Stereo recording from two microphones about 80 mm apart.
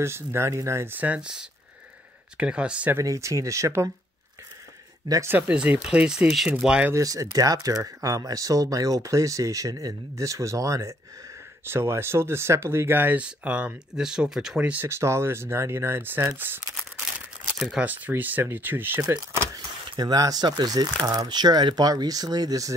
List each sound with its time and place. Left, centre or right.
0.0 s speech: right
0.9 s speech: centre
3.0 s speech: right
5.5 s speech: centre
6.9 s speech: right
11.6 s speech: right; by 14.7 s centre
14.9 s speech: right
17.6 s speech: centre
17.8 s speech: right
18.9 s speech: right